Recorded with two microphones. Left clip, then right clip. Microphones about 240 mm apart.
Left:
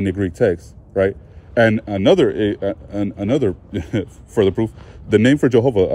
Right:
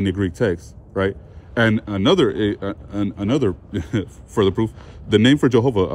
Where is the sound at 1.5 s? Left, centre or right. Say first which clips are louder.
Left 4 dB; right.